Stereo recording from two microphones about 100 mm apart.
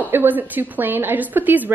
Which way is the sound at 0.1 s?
20° right (ahead or behind).